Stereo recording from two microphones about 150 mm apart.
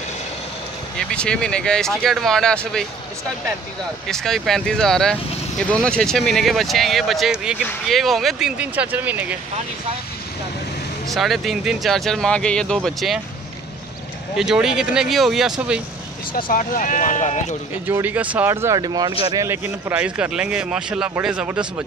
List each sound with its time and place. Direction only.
0.9 s speech: 5° left (ahead or behind)
4.1 s speech: centre (ahead or behind)
11.1 s speech: centre (ahead or behind)
14.3 s speech: 5° right (ahead or behind)
16.3 s speech: 70° left (ahead or behind)
17.8 s speech: 10° right (ahead or behind)